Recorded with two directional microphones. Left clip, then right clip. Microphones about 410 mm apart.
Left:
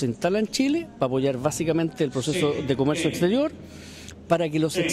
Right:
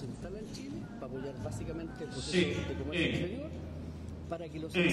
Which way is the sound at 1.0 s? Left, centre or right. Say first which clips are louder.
Left 18 dB; left.